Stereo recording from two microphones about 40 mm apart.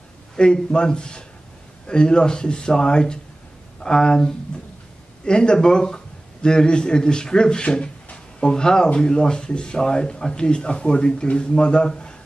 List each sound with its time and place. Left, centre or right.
0.4 s a man's voice: left